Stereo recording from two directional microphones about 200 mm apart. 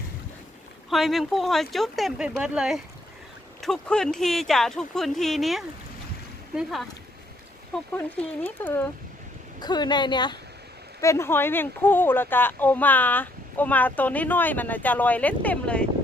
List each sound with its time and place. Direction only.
0.8 s speech: centre (ahead or behind)
8.2 s speech: 10° left (ahead or behind)
9.6 s speech: 20° left (ahead or behind); by 15.9 s 5° left (ahead or behind)